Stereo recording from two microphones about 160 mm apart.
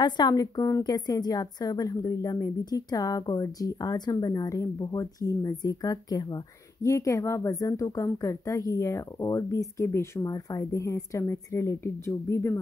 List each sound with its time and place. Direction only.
0.0 s a woman's voice: 25° left (ahead or behind)